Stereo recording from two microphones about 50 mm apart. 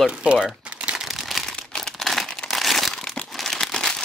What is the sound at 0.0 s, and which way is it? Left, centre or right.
Speech, right.